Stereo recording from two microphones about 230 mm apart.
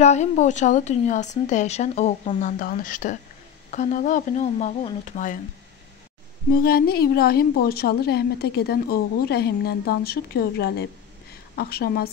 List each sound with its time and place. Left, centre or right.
0.0 s a woman's voice: left
6.5 s a woman's voice: left